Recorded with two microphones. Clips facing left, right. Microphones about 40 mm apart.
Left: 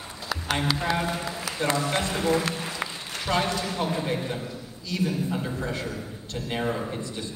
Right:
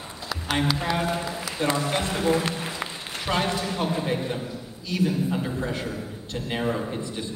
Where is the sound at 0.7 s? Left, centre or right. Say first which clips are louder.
Right 1 dB; centre.